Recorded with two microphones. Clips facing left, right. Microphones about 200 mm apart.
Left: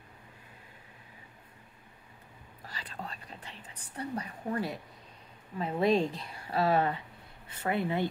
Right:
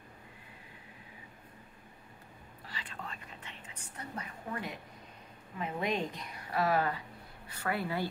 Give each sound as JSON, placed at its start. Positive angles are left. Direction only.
{"t": 2.6, "sound": "whispering", "side_deg": 40}
{"t": 5.6, "sound": "a woman's voice", "side_deg": 35}